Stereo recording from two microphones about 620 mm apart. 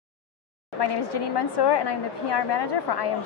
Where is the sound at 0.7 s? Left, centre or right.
Left.